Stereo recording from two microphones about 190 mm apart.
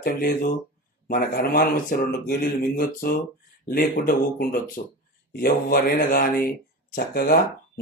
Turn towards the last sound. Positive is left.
turn(degrees=55)  # may be behind; listen again after turning